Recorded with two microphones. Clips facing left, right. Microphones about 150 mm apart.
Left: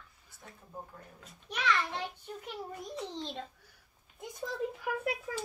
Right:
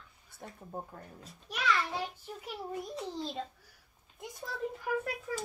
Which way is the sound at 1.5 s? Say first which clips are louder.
Even; 5° right (ahead or behind).